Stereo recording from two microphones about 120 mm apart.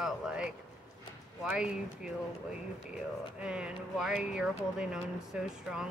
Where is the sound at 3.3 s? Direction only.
10° right (ahead or behind).